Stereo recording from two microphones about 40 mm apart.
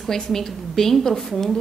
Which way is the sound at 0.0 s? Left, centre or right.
Centre.